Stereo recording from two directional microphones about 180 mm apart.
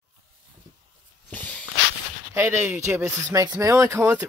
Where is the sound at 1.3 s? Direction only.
10° left (ahead or behind).